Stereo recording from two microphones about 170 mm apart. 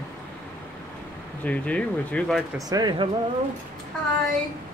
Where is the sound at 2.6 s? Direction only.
25° right (ahead or behind).